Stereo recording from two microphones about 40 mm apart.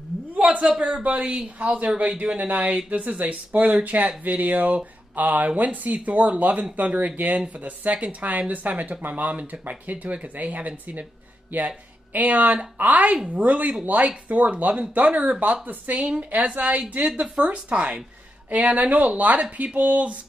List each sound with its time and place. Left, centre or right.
1.0 s speech: right
17.1 s speech: centre
17.5 s speech: right